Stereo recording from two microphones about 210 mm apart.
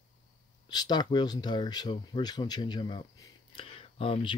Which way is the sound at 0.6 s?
20° left (ahead or behind).